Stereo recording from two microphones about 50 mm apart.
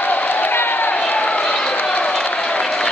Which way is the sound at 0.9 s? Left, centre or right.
Left.